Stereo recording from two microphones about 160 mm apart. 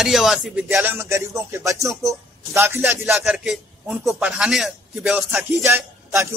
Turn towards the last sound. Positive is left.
turn(degrees=-15)  # may be behind; listen again after turning